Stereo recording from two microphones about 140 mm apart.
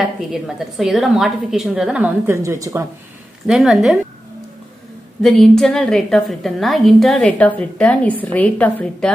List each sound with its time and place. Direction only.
0.3 s a woman's voice: centre (ahead or behind)
2.2 s speech: 20° right (ahead or behind)
3.4 s a woman's voice: centre (ahead or behind)
5.2 s a woman's voice: 5° left (ahead or behind)